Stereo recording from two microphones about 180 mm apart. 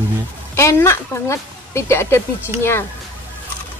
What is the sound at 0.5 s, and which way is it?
Speech, 15° left (ahead or behind).